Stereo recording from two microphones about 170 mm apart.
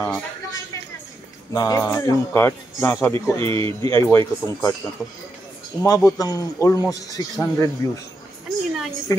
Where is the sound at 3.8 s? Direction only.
15° left (ahead or behind).